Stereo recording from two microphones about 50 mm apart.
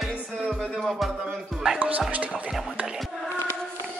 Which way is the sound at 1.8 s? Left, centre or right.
Right.